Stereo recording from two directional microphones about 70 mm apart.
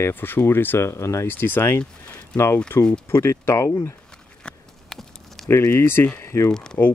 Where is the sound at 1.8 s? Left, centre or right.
Left.